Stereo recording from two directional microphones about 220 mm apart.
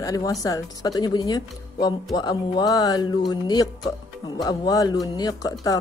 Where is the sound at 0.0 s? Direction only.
15° left (ahead or behind).